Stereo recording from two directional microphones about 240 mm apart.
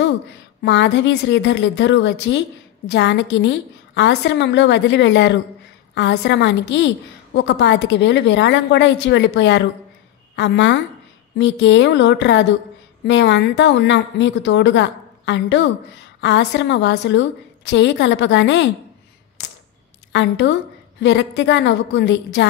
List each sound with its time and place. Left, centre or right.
0.0 s speech: left
20.1 s a woman's voice: left